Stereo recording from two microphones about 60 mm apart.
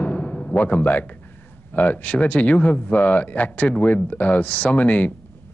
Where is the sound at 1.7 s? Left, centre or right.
Left.